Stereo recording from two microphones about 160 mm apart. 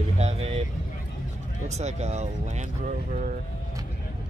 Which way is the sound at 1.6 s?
45° right (ahead or behind).